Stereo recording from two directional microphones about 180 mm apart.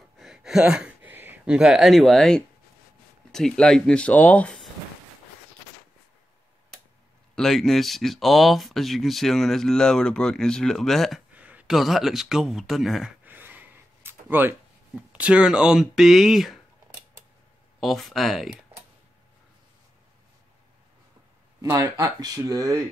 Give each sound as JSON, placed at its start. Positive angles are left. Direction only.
{"t": 0.2, "sound": "a sound", "side_deg": 0}
{"t": 3.3, "sound": "speech", "side_deg": 0}
{"t": 7.3, "sound": "speech", "side_deg": 0}
{"t": 17.7, "sound": "speech", "side_deg": 0}
{"t": 21.5, "sound": "speech", "side_deg": -15}